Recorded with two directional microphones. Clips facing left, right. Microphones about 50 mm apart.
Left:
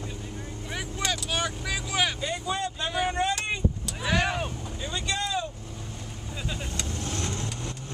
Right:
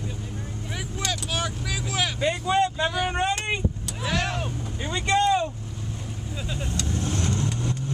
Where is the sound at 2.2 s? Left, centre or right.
Right.